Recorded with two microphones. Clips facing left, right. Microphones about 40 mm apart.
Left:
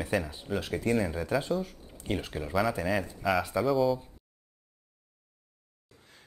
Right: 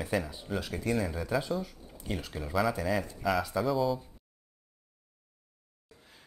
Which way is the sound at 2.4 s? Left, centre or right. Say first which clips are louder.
Even; centre.